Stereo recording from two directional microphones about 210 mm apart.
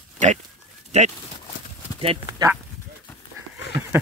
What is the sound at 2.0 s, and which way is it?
Speech, 20° right (ahead or behind).